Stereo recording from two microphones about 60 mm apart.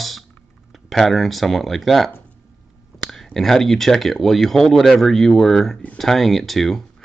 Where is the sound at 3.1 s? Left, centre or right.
Centre.